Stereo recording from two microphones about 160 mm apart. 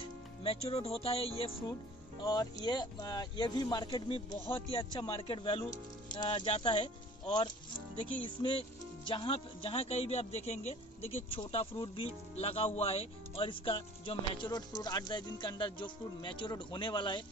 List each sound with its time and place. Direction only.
0.0 s speech: 35° left (ahead or behind)
2.2 s speech: 25° left (ahead or behind)